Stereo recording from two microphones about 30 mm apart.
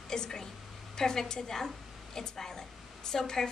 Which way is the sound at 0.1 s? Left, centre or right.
Left.